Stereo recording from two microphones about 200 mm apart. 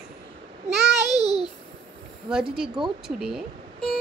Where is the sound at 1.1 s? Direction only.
20° left (ahead or behind).